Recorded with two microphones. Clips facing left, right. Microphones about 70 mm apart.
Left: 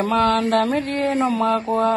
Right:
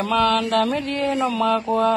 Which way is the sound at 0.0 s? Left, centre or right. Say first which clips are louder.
Left 1 dB; left.